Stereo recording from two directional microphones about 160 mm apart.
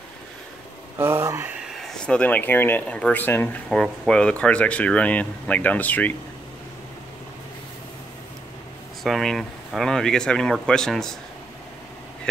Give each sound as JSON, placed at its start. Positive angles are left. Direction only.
{"t": 0.9, "sound": "speech", "side_deg": -15}
{"t": 1.8, "sound": "speech", "side_deg": 5}
{"t": 3.7, "sound": "speech", "side_deg": 0}
{"t": 9.0, "sound": "speech", "side_deg": 0}